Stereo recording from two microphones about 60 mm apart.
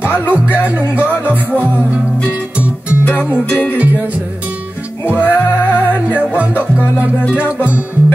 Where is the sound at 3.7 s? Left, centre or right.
Right.